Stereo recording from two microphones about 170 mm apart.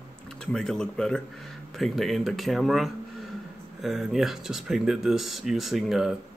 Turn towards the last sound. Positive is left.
turn(degrees=-5)  # may be behind; listen again after turning